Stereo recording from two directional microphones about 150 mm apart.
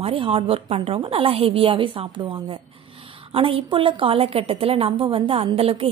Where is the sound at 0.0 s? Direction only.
35° right (ahead or behind).